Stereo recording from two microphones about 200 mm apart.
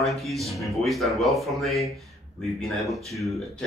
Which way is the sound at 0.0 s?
Centre (ahead or behind).